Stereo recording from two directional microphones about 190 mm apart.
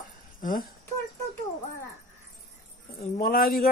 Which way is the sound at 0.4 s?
45° left (ahead or behind).